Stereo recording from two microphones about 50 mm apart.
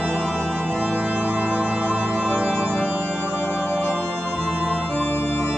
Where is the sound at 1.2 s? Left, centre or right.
Right.